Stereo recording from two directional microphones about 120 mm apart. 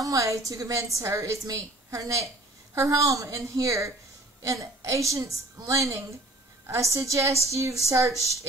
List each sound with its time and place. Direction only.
0.0 s a woman's voice: 25° right (ahead or behind)